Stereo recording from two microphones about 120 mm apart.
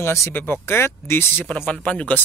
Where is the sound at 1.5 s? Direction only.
10° left (ahead or behind).